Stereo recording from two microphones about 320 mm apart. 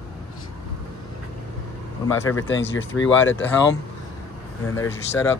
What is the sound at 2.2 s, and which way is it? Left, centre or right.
Speech, left.